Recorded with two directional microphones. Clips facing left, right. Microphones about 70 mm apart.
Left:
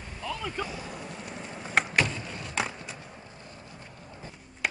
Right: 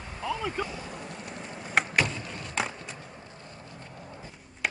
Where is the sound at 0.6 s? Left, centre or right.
Centre.